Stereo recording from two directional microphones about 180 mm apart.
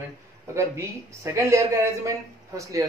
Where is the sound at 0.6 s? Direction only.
15° right (ahead or behind).